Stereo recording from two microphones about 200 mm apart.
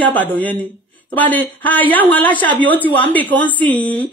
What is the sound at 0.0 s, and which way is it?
Speech, 10° left (ahead or behind).